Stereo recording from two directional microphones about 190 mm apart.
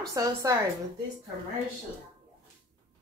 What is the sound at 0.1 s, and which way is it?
Speech, 15° right (ahead or behind).